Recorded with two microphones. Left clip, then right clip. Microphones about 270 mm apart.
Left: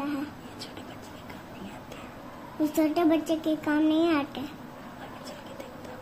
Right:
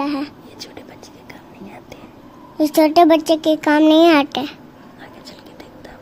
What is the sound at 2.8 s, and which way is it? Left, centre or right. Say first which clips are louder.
A child's voice: right 14 dB; right.